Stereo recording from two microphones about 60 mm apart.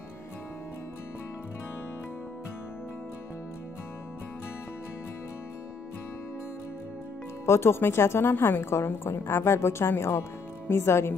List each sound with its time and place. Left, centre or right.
7.4 s a woman's voice: left